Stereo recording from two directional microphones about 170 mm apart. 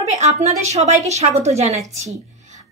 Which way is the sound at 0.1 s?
45° right (ahead or behind).